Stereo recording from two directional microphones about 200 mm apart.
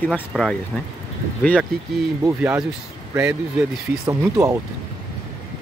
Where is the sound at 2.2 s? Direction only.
10° right (ahead or behind).